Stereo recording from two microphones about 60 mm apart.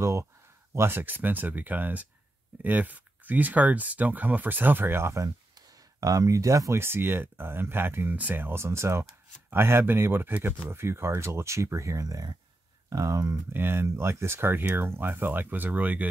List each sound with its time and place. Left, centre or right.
0.0 s speech: right
0.7 s speech: right
5.1 s speech: right
6.8 s speech: right
12.9 s speech: right
13.5 s speech: right